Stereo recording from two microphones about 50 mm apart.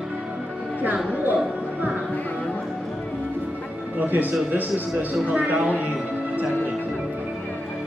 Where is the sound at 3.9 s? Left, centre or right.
Right.